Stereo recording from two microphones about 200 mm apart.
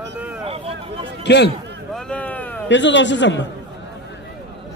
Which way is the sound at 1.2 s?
60° left (ahead or behind).